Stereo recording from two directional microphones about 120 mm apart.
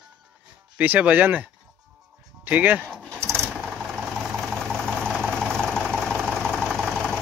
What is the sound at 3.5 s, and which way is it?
Vehicle, 5° right (ahead or behind).